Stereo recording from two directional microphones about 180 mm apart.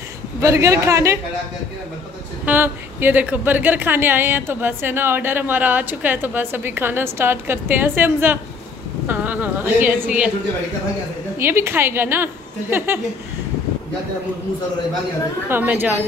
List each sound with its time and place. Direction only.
0.4 s a woman's voice: 15° right (ahead or behind)
2.4 s a woman's voice: 10° right (ahead or behind)
11.3 s a woman's voice: 15° right (ahead or behind)
15.4 s a woman's voice: 10° right (ahead or behind)